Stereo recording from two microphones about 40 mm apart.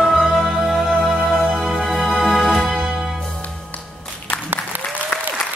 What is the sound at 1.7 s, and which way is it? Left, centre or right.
Music, centre.